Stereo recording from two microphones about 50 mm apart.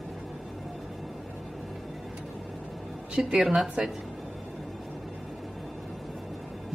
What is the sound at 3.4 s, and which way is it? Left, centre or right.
Speech, centre.